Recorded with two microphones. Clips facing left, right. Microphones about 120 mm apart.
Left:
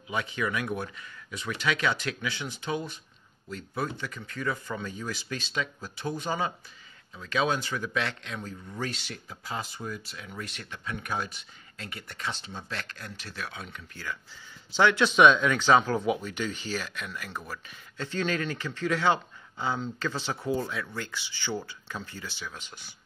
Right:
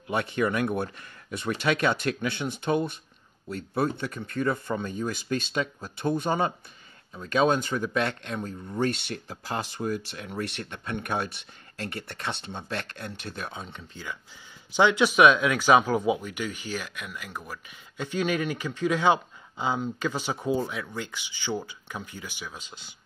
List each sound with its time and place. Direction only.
0.1 s speech: 60° right (ahead or behind)
4.7 s speech: 25° right (ahead or behind)
5.1 s speech: 50° right (ahead or behind)
13.5 s speech: 30° right (ahead or behind)